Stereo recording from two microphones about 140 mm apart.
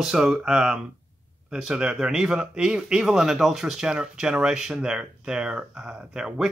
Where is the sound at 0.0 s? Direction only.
5° right (ahead or behind).